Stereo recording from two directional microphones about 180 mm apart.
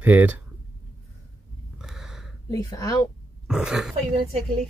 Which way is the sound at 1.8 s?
Centre (ahead or behind).